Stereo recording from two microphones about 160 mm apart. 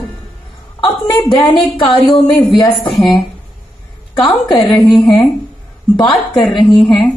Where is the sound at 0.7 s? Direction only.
25° left (ahead or behind).